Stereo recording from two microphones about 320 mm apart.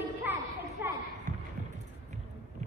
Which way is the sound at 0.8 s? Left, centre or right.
Centre.